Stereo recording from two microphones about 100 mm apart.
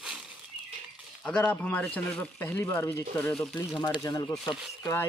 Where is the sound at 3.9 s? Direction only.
35° left (ahead or behind).